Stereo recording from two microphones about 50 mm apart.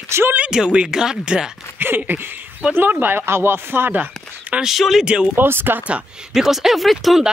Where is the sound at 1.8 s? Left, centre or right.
Right.